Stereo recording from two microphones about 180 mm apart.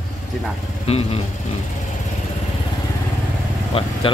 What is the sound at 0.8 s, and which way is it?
Speech, 35° left (ahead or behind).